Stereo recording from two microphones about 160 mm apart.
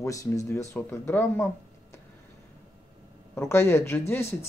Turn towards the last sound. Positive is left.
turn(degrees=15)  # may be behind; listen again after turning